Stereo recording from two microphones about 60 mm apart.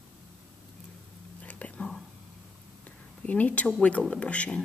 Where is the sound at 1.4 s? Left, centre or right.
Left.